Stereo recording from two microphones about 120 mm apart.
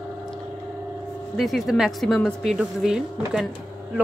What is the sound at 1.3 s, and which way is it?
Speech, centre (ahead or behind).